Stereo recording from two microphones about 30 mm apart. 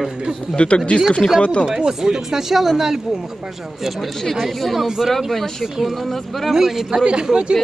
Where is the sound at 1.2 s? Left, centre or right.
Left.